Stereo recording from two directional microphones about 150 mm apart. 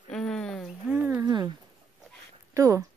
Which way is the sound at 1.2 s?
25° right (ahead or behind).